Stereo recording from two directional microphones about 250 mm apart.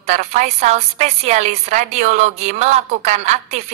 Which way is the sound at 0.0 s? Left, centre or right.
Right.